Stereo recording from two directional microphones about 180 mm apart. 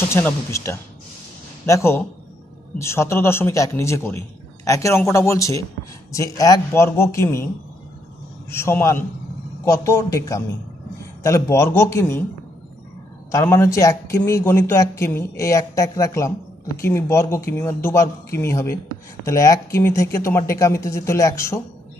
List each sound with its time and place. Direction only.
0.1 s speech: 15° left (ahead or behind)
13.3 s speech: 15° left (ahead or behind)